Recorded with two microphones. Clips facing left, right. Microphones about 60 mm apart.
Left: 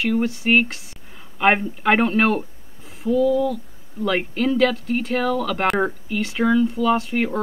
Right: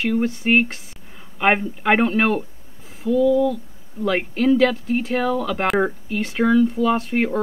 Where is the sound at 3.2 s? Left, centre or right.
Centre.